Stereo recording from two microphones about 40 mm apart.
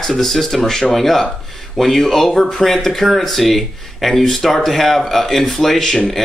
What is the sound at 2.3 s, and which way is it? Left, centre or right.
Speech, centre.